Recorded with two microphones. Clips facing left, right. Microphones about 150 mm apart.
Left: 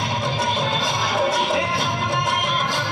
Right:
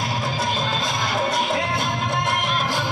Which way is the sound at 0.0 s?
Centre (ahead or behind).